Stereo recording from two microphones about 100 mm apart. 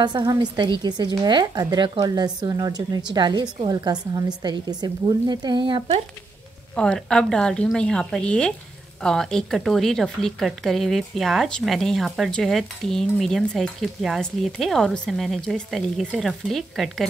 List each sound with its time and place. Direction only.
0.0 s a woman's voice: 45° right (ahead or behind); by 6.0 s 65° right (ahead or behind)
6.7 s a woman's voice: 10° left (ahead or behind)